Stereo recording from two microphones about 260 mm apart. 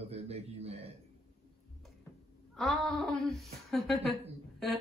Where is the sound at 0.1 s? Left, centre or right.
Right.